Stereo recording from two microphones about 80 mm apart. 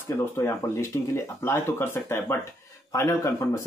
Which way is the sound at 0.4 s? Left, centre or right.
Left.